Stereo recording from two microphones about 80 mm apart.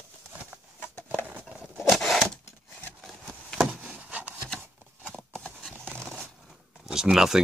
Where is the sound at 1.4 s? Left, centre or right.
Centre.